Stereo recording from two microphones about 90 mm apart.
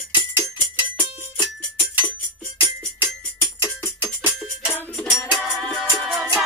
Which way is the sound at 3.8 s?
30° left (ahead or behind).